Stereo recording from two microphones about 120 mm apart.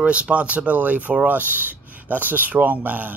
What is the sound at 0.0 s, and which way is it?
Speech, 10° right (ahead or behind).